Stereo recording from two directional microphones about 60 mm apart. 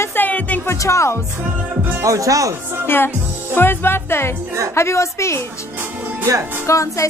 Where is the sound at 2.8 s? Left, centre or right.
Left.